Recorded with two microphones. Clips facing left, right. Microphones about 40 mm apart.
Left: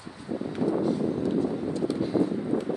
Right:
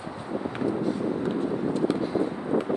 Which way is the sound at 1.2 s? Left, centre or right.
Right.